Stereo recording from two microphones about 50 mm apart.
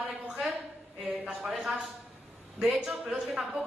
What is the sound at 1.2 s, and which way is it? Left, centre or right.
Speech, centre.